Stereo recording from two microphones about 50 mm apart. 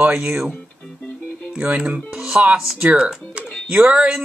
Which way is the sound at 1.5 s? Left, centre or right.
Right.